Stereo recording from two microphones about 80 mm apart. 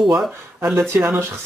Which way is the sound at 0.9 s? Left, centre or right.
Right.